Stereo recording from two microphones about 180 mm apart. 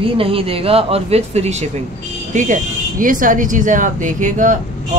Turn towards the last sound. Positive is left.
turn(degrees=-45)  # may be behind; listen again after turning